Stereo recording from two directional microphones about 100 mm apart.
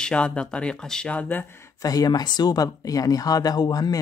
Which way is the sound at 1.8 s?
40° left (ahead or behind).